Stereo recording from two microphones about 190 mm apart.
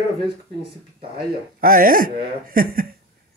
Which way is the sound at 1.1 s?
50° right (ahead or behind).